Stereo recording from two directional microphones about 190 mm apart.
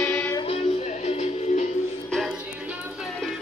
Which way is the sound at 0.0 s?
10° left (ahead or behind).